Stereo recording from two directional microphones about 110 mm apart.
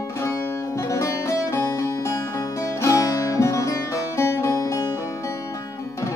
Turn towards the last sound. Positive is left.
turn(degrees=25)  # may be behind; listen again after turning